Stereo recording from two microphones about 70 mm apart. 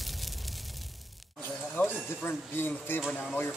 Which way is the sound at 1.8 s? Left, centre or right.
Left.